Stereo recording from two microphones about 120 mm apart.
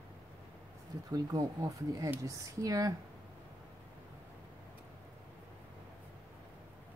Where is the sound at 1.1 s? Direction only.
30° right (ahead or behind).